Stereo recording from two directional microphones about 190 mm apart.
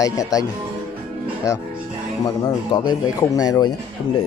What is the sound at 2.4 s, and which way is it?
Speech, 20° left (ahead or behind).